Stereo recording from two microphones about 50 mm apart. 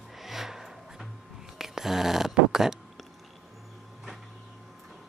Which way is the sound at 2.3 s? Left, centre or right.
Centre.